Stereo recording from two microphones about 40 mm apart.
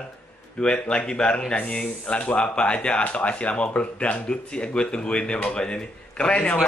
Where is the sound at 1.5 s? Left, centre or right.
Left.